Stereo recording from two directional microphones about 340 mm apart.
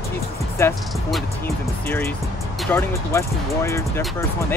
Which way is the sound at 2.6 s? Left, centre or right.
Centre.